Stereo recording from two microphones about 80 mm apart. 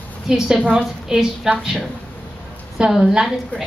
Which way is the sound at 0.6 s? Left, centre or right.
Centre.